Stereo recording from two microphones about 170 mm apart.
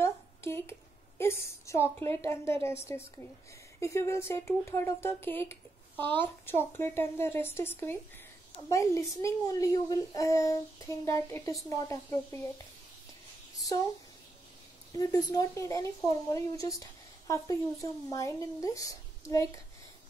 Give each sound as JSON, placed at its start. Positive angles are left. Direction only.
{"t": 0.0, "sound": "a sound", "side_deg": 15}
{"t": 3.8, "sound": "speech", "side_deg": 15}
{"t": 14.9, "sound": "speech", "side_deg": 20}